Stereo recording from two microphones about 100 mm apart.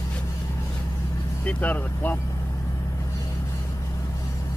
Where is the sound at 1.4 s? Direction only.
15° left (ahead or behind).